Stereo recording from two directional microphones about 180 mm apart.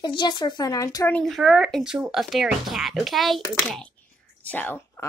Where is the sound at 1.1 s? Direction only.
Centre (ahead or behind).